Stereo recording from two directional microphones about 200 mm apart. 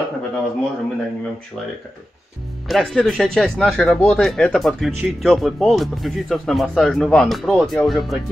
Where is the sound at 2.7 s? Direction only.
Centre (ahead or behind).